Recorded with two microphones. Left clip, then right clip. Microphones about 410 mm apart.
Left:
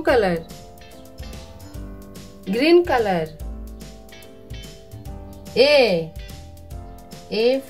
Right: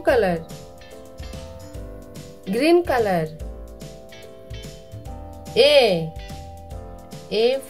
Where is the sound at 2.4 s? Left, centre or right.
Centre.